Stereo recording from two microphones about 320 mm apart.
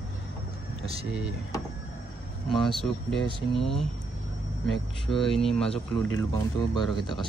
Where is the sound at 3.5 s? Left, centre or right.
Centre.